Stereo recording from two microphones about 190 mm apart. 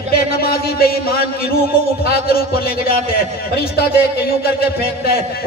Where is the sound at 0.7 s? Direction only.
50° left (ahead or behind).